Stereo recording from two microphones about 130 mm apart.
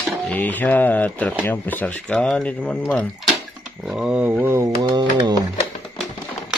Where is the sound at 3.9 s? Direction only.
5° right (ahead or behind); by 4.9 s 20° right (ahead or behind).